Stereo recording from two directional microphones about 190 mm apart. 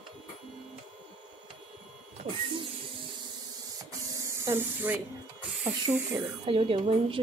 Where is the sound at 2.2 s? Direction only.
25° right (ahead or behind).